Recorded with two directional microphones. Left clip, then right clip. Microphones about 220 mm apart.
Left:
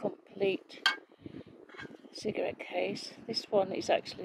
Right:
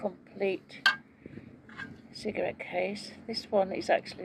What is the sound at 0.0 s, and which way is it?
Dishes, 15° left (ahead or behind).